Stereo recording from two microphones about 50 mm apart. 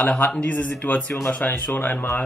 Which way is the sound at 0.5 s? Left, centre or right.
Left.